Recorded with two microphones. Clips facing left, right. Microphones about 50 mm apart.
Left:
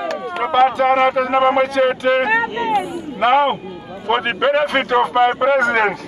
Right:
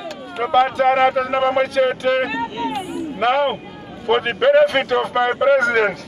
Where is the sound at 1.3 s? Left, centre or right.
Centre.